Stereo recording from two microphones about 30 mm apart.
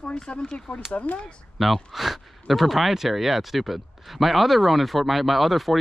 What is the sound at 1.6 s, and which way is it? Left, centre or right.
Speech, centre.